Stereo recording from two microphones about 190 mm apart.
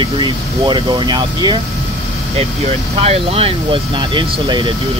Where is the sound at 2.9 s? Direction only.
30° right (ahead or behind).